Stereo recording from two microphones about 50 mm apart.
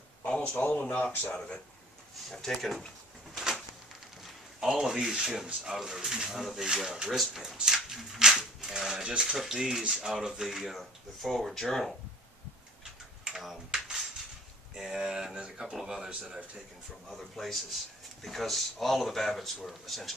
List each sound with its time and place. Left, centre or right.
0.5 s speech: left
2.3 s speech: centre
3.3 s a sound: centre
4.6 s speech: centre
9.4 s speech: centre
13.4 s typing: centre
14.7 s speech: centre
16.1 s speech: right
17.1 s speech: centre